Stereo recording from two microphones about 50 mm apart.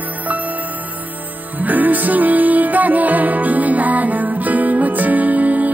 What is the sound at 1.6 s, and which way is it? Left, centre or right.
Music, right.